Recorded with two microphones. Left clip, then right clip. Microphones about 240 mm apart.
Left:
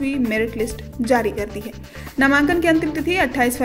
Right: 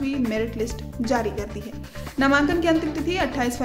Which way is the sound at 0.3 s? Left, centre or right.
Centre.